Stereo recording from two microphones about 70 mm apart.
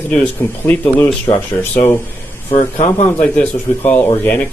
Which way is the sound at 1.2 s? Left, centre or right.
Left.